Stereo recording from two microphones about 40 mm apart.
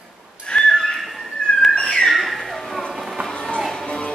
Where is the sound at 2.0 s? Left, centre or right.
Centre.